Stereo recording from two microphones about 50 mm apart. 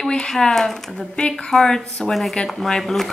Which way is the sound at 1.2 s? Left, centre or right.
Centre.